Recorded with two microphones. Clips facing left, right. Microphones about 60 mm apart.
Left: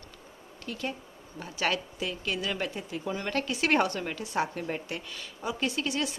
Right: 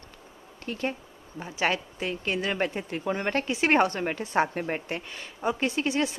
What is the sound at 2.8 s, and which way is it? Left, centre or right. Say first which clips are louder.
A woman's voice: right 4 dB; right.